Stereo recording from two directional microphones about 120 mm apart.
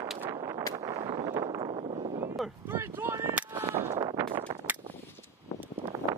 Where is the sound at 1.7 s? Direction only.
45° right (ahead or behind).